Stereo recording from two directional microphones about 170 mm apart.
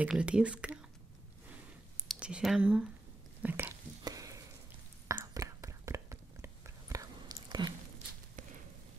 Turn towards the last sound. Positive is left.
turn(degrees=-25)  # may be behind; listen again after turning